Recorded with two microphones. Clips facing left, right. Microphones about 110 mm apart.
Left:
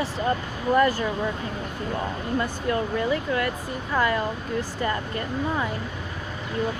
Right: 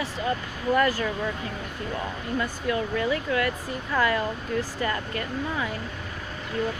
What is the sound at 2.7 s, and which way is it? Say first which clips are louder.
Speech: left 1 dB; 35° left (ahead or behind).